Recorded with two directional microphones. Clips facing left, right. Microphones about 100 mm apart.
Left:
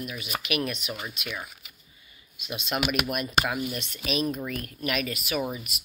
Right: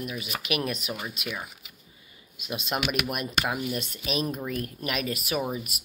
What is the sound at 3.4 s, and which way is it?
Speech, 25° right (ahead or behind).